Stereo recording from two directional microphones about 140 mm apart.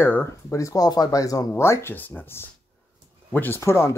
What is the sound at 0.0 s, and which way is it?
Speech, 15° left (ahead or behind).